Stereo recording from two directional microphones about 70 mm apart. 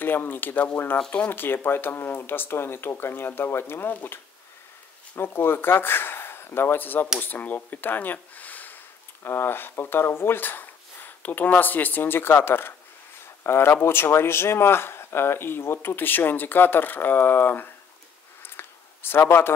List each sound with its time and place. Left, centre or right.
0.0 s speech: left
9.2 s speech: left
18.4 s a sound: left